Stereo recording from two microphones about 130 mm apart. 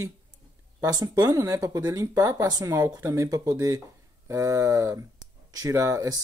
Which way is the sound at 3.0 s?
20° right (ahead or behind).